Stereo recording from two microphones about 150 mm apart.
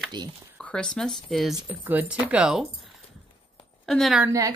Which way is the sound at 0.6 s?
5° left (ahead or behind).